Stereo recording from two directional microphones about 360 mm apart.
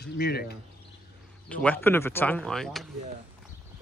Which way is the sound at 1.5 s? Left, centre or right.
Centre.